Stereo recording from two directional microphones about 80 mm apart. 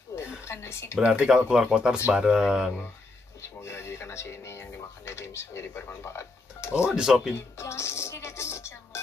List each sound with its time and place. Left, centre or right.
0.1 s a sound: left
1.0 s speech: centre
3.6 s music: left
6.8 s speech: centre
7.3 s music: left